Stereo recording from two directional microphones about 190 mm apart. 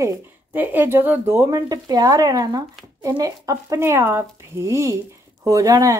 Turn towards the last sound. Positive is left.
turn(degrees=-15)  # may be behind; listen again after turning